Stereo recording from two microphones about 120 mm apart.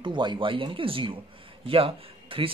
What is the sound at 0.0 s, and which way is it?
Speech, 40° right (ahead or behind).